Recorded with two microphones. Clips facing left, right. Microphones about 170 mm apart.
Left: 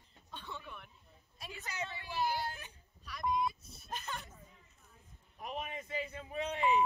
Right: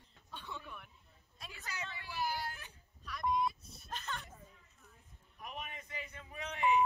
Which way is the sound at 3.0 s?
Centre (ahead or behind).